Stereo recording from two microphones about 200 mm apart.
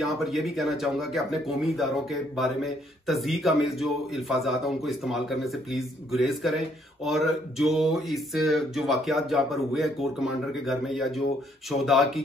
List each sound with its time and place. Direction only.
0.0 s speech: centre (ahead or behind)